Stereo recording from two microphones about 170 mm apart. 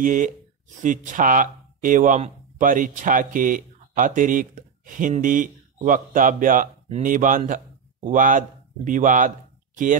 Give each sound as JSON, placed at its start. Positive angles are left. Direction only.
{"t": 0.0, "sound": "speech", "side_deg": -50}